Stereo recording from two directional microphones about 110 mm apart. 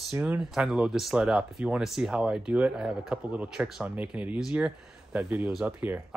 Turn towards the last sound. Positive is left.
turn(degrees=-15)  # may be behind; listen again after turning